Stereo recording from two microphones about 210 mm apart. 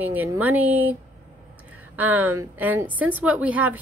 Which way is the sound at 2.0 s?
10° right (ahead or behind).